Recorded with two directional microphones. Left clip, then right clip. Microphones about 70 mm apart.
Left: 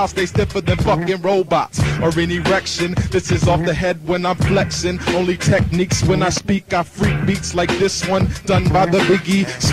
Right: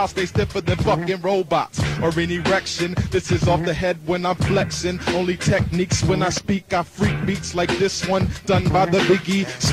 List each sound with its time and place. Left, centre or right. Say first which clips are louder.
0.0 s music: left 3 dB; left